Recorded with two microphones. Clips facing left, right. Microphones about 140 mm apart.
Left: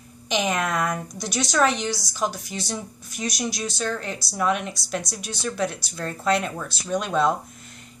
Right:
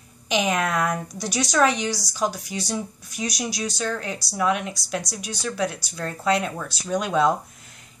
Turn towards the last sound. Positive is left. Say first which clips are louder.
# right 1 dB
turn(degrees=-5)  # may be behind; listen again after turning